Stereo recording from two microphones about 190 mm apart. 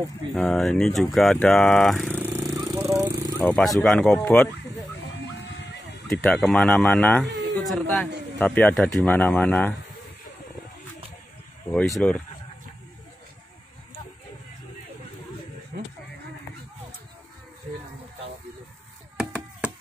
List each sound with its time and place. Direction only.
0.3 s speech: 5° left (ahead or behind)
2.5 s a sound: 15° right (ahead or behind)
3.3 s speech: 5° left (ahead or behind)
6.0 s speech: 5° left (ahead or behind)
12.0 s speech: 5° left (ahead or behind)
19.1 s chop: 5° right (ahead or behind)